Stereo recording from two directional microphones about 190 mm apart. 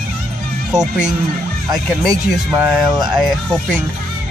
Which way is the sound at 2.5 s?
5° right (ahead or behind).